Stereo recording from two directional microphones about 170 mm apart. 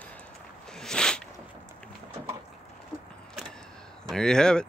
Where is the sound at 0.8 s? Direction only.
5° left (ahead or behind).